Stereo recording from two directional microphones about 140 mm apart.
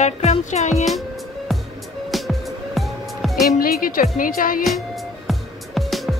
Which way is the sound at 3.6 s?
90° left.